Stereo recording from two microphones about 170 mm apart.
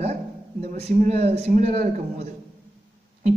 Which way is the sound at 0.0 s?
40° right (ahead or behind).